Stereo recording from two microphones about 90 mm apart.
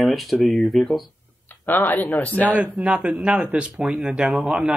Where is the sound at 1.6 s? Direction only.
20° left (ahead or behind).